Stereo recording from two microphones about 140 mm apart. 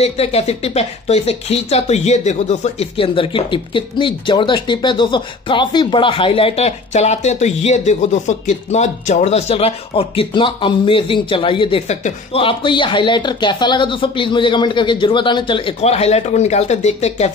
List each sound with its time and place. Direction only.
0.0 s speech: 50° left (ahead or behind)
11.9 s speech: 50° left (ahead or behind)
15.8 s speech: 50° left (ahead or behind)